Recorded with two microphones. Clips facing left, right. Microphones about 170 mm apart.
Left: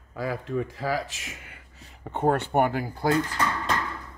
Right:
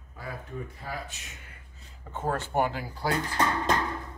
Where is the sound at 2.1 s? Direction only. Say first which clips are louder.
Left 7 dB; 65° left (ahead or behind).